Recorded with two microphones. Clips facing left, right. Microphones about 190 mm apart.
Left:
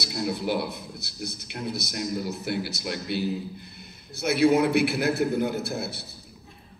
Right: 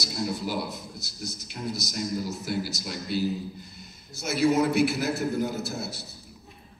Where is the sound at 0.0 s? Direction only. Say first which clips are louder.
Left 2 dB; 60° left (ahead or behind).